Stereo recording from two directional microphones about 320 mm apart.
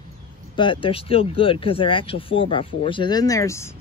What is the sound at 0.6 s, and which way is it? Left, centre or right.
Speech, centre.